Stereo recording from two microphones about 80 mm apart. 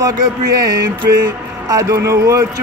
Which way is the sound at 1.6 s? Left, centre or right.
Right.